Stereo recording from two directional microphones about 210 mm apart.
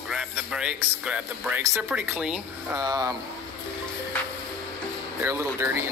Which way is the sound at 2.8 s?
15° right (ahead or behind).